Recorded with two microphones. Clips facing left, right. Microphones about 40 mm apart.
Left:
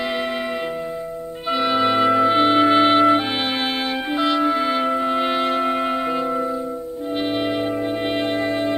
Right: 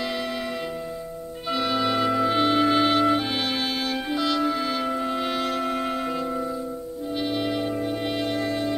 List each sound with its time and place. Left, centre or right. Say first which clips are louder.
1.5 s music: left 5 dB; left
7.2 s brass instrument: left 4 dB; left